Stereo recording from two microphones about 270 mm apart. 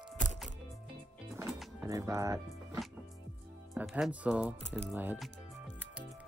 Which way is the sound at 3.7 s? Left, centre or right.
Centre.